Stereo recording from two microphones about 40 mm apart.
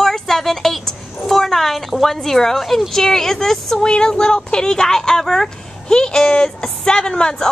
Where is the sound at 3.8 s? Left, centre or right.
Centre.